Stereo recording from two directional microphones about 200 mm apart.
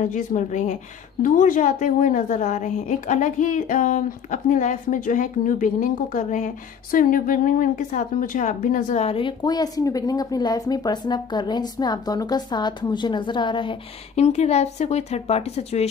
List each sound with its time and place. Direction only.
0.0 s a woman's voice: 40° left (ahead or behind)